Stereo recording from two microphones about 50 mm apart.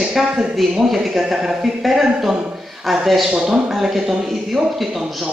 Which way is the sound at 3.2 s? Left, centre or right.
Centre.